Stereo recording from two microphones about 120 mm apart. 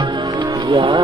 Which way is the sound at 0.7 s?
45° right (ahead or behind).